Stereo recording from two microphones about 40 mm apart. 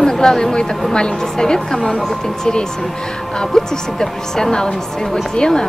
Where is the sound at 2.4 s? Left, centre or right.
Centre.